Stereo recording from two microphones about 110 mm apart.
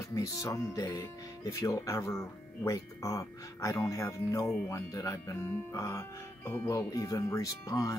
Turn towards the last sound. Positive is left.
turn(degrees=30)  # may be behind; listen again after turning